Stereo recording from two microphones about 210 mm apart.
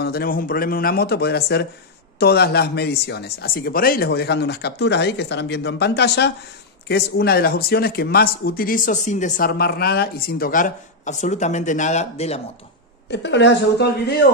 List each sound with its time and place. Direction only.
0.0 s speech: 45° left (ahead or behind); by 12.4 s 30° left (ahead or behind)
13.1 s speech: 55° left (ahead or behind)